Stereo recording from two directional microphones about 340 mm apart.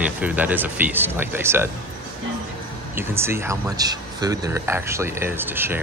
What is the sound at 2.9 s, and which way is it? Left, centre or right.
Speech, centre.